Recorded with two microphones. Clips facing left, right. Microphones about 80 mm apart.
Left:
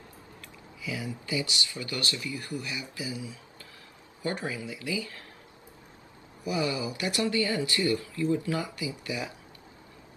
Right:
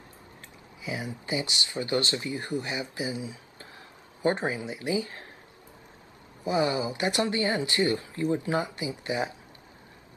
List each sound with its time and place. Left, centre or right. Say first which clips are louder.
0.8 s speech: right 1 dB; right
6.4 s speech: right 4 dB; right